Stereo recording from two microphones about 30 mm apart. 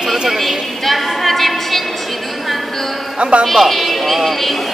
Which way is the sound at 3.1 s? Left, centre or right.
Right.